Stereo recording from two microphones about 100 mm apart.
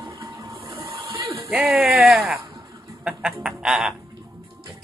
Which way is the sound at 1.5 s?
5° right (ahead or behind).